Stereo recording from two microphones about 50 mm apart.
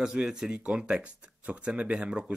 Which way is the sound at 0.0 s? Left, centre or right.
Centre.